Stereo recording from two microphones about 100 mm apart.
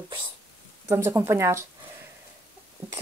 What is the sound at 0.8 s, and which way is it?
Speech, 25° right (ahead or behind).